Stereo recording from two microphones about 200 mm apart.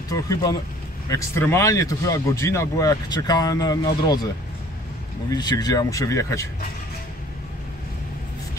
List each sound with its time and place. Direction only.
0.1 s speech: 20° left (ahead or behind)
5.3 s speech: 20° left (ahead or behind)